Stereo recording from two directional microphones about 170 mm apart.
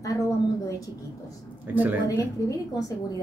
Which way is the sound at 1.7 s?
10° right (ahead or behind).